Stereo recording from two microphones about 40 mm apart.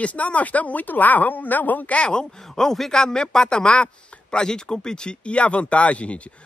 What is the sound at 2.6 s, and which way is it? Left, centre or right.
Speech, centre.